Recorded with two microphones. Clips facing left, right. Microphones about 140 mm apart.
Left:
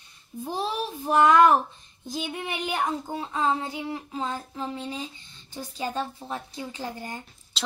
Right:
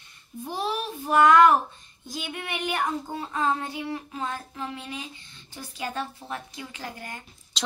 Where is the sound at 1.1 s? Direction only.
25° left (ahead or behind).